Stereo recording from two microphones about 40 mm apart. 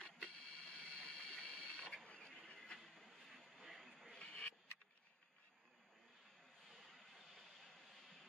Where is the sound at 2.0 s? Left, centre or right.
Left.